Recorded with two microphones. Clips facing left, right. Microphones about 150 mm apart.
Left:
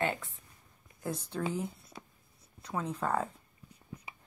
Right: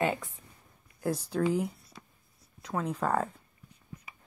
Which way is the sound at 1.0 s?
5° right (ahead or behind).